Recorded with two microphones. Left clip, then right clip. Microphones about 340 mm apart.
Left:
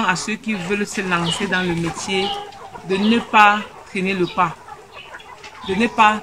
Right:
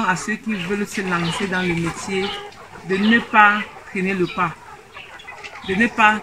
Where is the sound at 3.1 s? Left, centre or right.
Centre.